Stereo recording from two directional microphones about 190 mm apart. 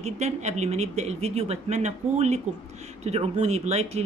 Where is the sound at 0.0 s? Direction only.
35° right (ahead or behind).